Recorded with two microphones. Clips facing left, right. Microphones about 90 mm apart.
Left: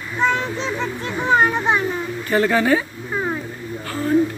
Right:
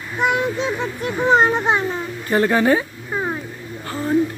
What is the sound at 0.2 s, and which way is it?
A child's voice, 15° right (ahead or behind).